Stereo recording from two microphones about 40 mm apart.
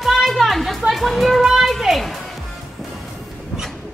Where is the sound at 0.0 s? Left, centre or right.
Centre.